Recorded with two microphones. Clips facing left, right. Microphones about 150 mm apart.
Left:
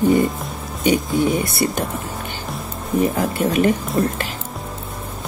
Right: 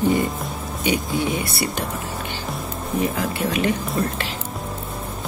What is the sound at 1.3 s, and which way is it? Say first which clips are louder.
Speech: left 4 dB; 50° left (ahead or behind).